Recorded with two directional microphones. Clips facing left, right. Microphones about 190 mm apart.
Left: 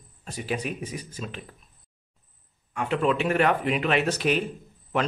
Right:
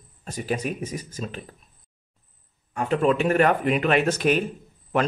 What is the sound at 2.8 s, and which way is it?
Speech, 45° right (ahead or behind).